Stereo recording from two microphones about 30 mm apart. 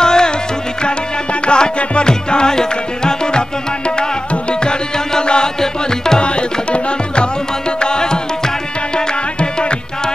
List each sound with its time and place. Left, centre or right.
0.0 s music: left
1.4 s music: left; by 6.1 s centre
6.1 s tabla: left
7.8 s music: left